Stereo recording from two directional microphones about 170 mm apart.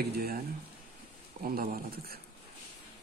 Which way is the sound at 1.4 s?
60° right (ahead or behind).